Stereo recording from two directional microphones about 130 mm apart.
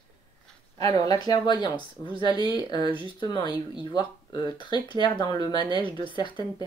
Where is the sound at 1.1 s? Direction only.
30° left (ahead or behind).